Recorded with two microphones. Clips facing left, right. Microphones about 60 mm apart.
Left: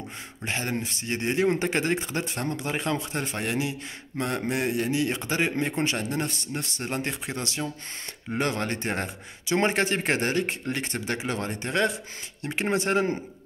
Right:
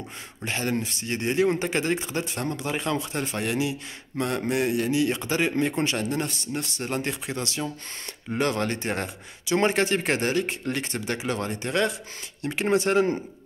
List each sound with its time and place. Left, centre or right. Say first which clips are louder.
0.5 s a man's voice: right 2 dB; left